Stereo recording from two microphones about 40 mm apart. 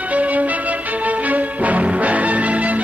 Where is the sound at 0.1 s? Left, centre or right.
Right.